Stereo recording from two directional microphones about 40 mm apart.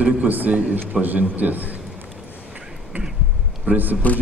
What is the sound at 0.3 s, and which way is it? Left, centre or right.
A man's voice, right.